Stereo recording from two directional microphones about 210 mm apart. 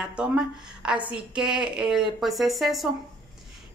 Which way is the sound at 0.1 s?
5° right (ahead or behind).